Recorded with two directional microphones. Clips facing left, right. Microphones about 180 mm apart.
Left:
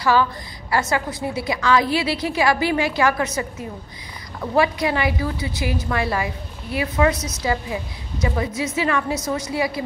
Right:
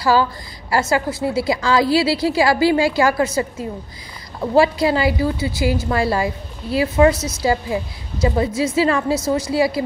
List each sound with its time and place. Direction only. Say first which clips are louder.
0.0 s a woman's voice: right 2 dB; 30° right (ahead or behind)